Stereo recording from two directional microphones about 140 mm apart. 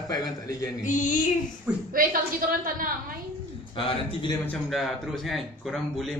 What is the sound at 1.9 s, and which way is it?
A woman's voice, 85° right.